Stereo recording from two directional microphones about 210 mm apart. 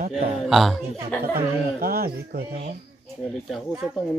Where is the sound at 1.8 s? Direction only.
45° right (ahead or behind).